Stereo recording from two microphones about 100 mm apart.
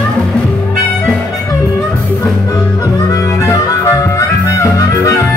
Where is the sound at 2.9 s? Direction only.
35° left (ahead or behind).